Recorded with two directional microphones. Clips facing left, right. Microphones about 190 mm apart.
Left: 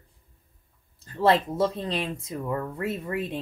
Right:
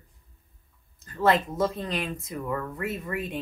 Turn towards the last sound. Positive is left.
turn(degrees=30)  # may be behind; listen again after turning